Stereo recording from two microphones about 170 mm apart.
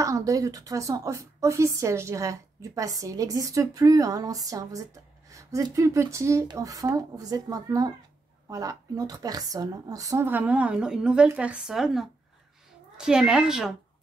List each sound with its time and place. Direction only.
0.0 s a woman's voice: 20° right (ahead or behind); by 13.7 s 5° right (ahead or behind)